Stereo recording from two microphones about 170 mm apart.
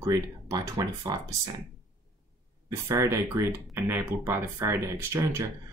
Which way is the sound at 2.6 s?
20° right (ahead or behind).